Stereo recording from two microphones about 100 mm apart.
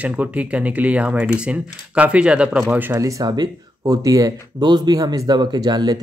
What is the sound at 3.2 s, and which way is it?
Speech, 45° right (ahead or behind).